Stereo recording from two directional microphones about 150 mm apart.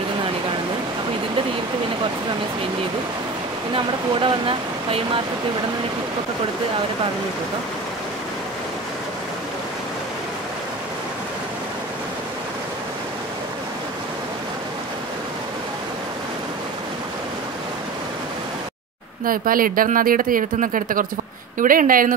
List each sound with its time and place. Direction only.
3.7 s speech: 35° right (ahead or behind)
19.2 s speech: 70° right (ahead or behind)